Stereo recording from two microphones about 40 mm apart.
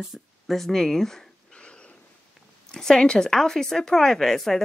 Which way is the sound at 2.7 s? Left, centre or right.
Centre.